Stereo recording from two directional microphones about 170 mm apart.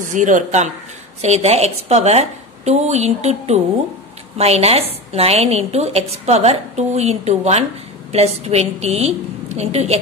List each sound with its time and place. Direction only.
0.0 s a woman's voice: 50° right (ahead or behind)